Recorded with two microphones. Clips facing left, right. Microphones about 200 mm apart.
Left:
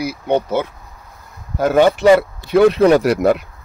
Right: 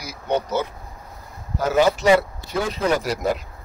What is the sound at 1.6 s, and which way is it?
Speech, 55° left (ahead or behind).